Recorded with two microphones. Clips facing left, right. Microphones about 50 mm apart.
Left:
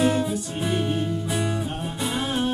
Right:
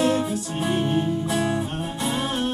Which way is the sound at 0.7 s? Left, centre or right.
Right.